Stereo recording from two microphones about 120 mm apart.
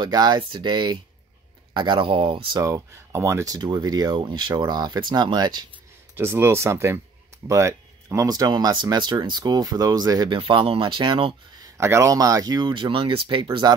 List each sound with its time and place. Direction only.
0.0 s speech: 35° right (ahead or behind)
2.6 s speech: 25° right (ahead or behind)
3.5 s speech: 35° right (ahead or behind)
6.1 s speech: 20° right (ahead or behind); by 11.3 s 45° right (ahead or behind)
11.6 s speech: 25° right (ahead or behind); by 13.7 s 40° right (ahead or behind)